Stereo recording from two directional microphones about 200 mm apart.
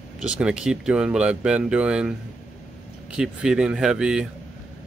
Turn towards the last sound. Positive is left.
turn(degrees=-5)  # may be behind; listen again after turning